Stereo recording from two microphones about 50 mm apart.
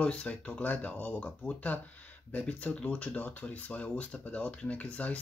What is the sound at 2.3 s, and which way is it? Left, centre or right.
Speech, left.